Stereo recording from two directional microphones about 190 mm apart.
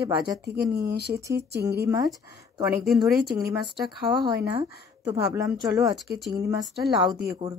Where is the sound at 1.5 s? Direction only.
60° right (ahead or behind).